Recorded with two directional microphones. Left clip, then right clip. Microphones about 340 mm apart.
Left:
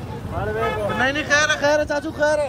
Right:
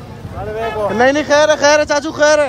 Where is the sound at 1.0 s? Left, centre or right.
Centre.